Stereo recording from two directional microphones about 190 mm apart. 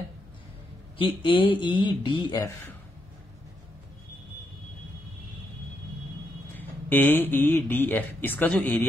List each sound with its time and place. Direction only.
0.9 s speech: 25° left (ahead or behind)
6.5 s speech: 10° left (ahead or behind)